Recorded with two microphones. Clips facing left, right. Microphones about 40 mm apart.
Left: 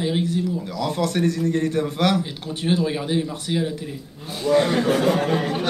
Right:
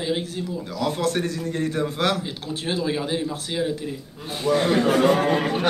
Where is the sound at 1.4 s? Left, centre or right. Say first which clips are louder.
Left 3 dB; centre.